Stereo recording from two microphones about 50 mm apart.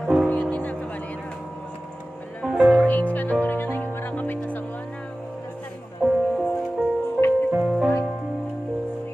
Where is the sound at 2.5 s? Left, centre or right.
Right.